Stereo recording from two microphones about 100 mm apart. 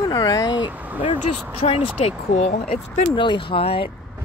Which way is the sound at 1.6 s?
90° left.